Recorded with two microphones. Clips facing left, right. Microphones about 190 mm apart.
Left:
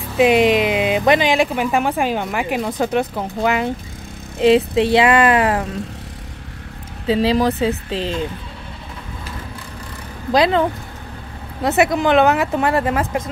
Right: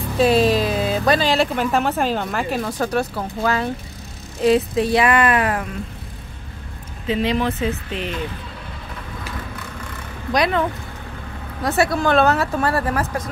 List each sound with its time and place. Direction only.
0.2 s speech: 20° left (ahead or behind)
7.1 s speech: 35° left (ahead or behind)
10.3 s speech: 30° left (ahead or behind)
11.6 s speech: 20° left (ahead or behind)